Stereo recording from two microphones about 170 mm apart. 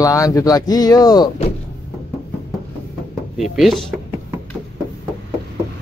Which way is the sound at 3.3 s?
Centre (ahead or behind).